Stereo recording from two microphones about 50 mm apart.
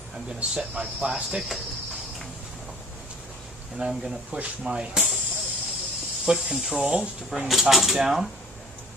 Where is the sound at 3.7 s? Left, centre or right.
Centre.